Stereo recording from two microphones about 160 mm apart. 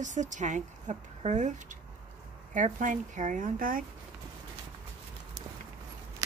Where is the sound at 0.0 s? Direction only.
50° right (ahead or behind).